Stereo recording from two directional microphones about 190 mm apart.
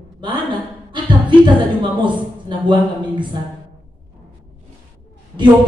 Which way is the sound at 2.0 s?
25° right (ahead or behind).